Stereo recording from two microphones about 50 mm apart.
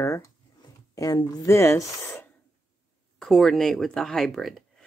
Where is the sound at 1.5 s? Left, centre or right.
Left.